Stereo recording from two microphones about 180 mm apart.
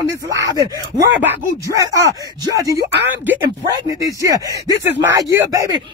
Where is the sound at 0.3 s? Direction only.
20° right (ahead or behind).